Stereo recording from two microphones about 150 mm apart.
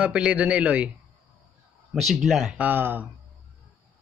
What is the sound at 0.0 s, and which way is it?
Speech, 10° right (ahead or behind).